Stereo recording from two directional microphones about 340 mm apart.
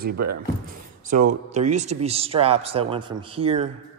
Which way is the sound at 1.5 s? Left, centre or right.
Centre.